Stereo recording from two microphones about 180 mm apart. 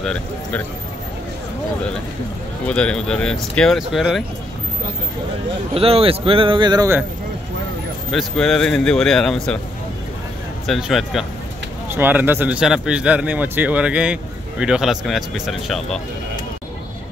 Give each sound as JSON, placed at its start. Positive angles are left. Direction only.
{"t": 0.0, "sound": "speech", "side_deg": 5}
{"t": 2.6, "sound": "speech", "side_deg": 5}
{"t": 5.8, "sound": "speech", "side_deg": -30}
{"t": 8.1, "sound": "speech", "side_deg": 0}
{"t": 10.7, "sound": "speech", "side_deg": 0}